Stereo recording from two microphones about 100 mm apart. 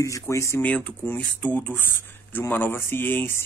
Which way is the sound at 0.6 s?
15° left (ahead or behind).